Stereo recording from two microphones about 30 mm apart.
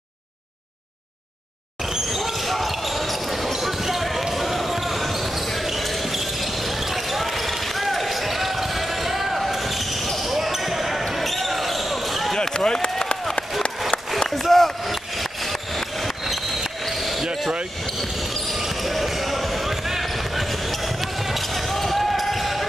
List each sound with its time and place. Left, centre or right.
2.1 s basketball bounce: centre
6.9 s basketball bounce: centre
12.4 s a sound: left
14.3 s a sound: centre
18.9 s basketball bounce: centre
21.7 s basketball bounce: centre